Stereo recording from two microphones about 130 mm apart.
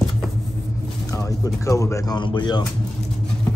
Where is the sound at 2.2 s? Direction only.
35° left (ahead or behind).